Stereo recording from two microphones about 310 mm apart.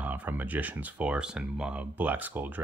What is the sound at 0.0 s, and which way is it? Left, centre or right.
Speech, centre.